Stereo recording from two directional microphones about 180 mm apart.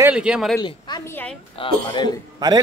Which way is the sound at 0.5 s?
25° left (ahead or behind).